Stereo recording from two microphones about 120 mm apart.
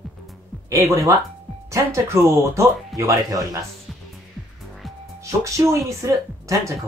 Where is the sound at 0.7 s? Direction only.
25° right (ahead or behind).